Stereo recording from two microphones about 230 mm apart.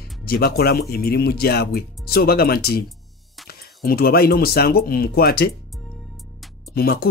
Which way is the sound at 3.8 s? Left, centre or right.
Left.